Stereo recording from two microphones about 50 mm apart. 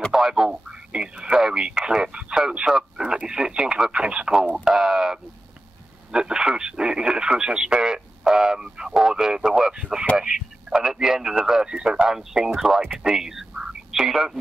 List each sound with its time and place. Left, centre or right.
0.1 s speech: centre